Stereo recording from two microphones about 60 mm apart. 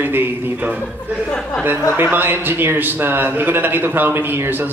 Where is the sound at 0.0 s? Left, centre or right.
Right.